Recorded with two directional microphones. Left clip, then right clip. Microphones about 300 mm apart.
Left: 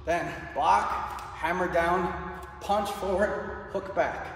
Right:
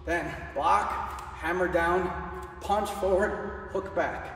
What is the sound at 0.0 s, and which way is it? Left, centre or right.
A woman's voice, centre.